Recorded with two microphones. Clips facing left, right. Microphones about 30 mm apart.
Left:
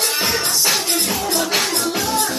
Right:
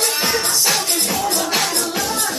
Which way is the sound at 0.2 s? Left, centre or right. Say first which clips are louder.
Even; centre.